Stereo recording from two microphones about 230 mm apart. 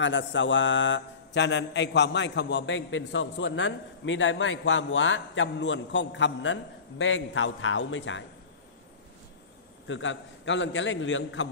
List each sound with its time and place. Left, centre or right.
0.0 s mantra: left
9.8 s a man's voice: left